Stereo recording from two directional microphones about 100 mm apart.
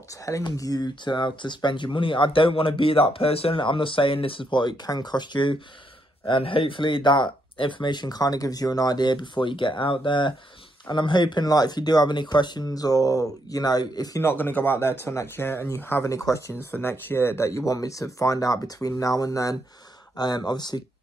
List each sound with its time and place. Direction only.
0.1 s speech: 35° left (ahead or behind)
14.2 s speech: 20° left (ahead or behind); by 20.8 s 45° left (ahead or behind)